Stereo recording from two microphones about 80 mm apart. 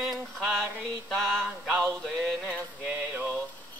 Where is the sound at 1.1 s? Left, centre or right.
Centre.